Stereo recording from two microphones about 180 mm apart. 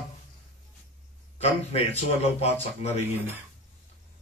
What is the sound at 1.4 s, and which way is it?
A man's voice, 35° left (ahead or behind).